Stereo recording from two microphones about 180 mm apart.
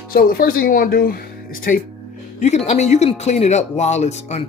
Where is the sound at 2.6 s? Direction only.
40° left (ahead or behind).